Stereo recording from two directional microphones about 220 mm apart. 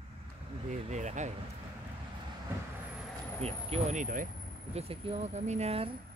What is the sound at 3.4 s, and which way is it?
Speech, 30° right (ahead or behind).